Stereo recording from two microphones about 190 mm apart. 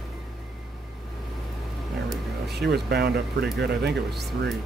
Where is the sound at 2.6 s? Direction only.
60° right (ahead or behind).